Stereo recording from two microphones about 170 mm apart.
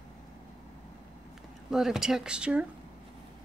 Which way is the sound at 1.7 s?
Centre (ahead or behind).